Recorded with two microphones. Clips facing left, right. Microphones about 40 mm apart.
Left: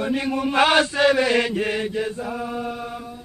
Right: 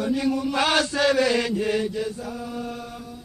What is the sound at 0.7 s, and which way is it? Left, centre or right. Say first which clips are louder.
Mantra: left 3 dB; left.